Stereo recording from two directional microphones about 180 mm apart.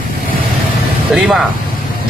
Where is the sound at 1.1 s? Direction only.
5° right (ahead or behind).